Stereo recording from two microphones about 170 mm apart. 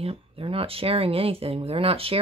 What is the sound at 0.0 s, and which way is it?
Speech, 35° right (ahead or behind).